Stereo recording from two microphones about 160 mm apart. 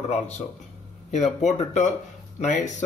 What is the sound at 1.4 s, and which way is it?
A man's voice, 50° left (ahead or behind).